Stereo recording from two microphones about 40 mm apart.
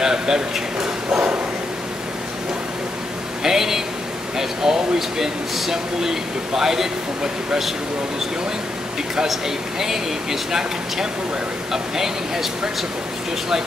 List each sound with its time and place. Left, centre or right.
0.0 s speech: centre
3.4 s a sound: centre
4.4 s speech: centre
9.3 s speech: centre